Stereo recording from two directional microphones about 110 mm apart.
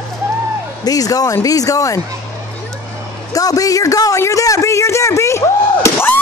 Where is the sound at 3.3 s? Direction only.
35° left (ahead or behind).